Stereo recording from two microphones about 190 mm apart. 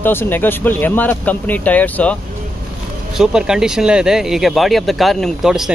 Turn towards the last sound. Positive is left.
turn(degrees=0)  # may be behind; listen again after turning